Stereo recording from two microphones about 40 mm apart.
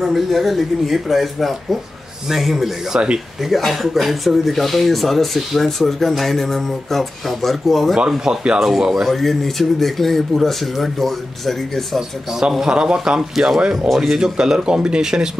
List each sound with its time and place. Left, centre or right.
0.0 s speech: centre
2.9 s speech: right
3.4 s speech: centre
8.2 s a man's voice: centre
8.5 s speech: centre
12.4 s a man's voice: centre
13.8 s speech: centre
14.1 s a man's voice: centre